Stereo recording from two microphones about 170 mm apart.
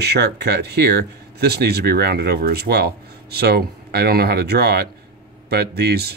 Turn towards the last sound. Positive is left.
turn(degrees=-70)  # may be behind; listen again after turning